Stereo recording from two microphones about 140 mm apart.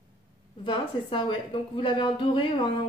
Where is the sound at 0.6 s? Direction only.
35° left (ahead or behind).